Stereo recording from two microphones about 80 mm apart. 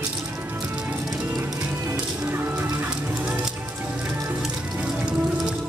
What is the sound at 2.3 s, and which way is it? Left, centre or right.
Music, right.